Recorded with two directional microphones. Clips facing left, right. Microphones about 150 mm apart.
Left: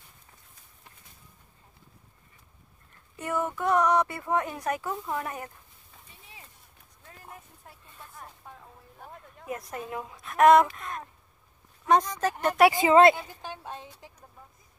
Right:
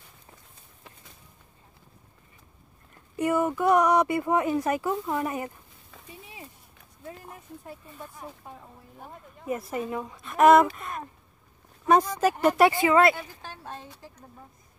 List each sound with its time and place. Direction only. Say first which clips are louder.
0.8 s a sound: right 6 dB; 90° right
3.2 s speech: right 6 dB; 10° right (ahead or behind)
7.1 s speech: right 7 dB; centre (ahead or behind)
12.6 s a woman's voice: left 4 dB; 20° left (ahead or behind)